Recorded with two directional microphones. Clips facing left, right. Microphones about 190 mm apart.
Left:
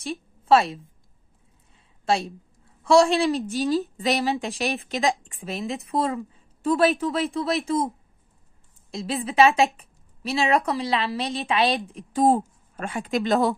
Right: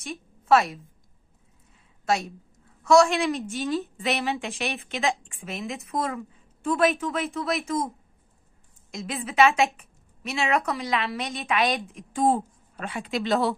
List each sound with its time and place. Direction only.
0.0 s a woman's voice: 30° left (ahead or behind)
2.0 s a woman's voice: 30° left (ahead or behind)
8.9 s a woman's voice: 35° left (ahead or behind)